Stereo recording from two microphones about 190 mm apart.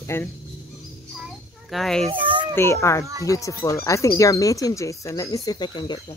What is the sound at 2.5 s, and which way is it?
Speech, 15° left (ahead or behind).